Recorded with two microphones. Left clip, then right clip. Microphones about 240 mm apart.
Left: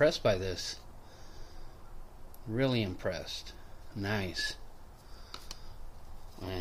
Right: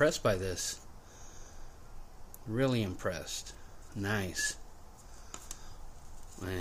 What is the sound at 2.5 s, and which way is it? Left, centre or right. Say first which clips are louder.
Speech: even; centre.